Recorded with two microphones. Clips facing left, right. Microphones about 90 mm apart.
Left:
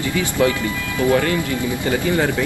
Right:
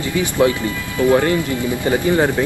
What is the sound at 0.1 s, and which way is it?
Speech, 25° right (ahead or behind).